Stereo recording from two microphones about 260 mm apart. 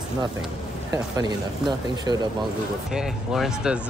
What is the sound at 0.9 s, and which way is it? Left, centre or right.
Speech, centre.